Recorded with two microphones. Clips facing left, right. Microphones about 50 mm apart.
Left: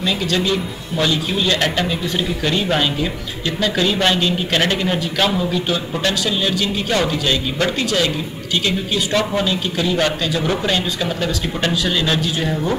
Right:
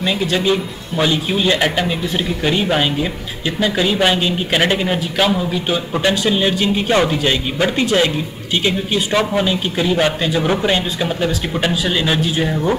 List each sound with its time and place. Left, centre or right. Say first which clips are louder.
0.0 s a man's voice: right 2 dB; centre
6.2 s a man's voice: right 4 dB; right